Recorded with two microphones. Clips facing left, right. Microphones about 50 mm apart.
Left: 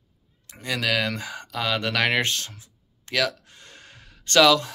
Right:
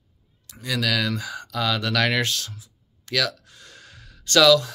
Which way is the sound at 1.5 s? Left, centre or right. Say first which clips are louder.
Right 1 dB; left.